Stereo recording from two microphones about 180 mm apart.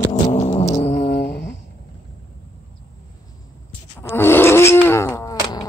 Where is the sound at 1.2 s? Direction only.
70° left (ahead or behind).